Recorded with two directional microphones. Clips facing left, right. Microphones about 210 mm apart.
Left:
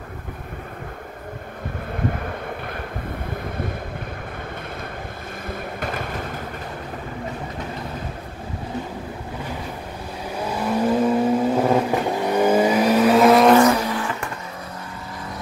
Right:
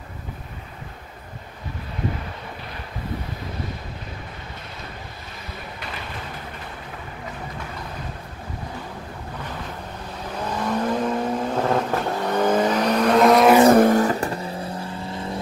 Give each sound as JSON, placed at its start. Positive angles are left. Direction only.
{"t": 5.5, "sound": "a sound", "side_deg": 50}
{"t": 10.4, "sound": "vehicle", "side_deg": 10}
{"t": 13.7, "sound": "vehicle", "side_deg": -45}